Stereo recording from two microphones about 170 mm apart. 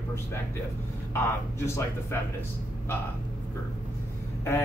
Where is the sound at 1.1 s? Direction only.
15° left (ahead or behind).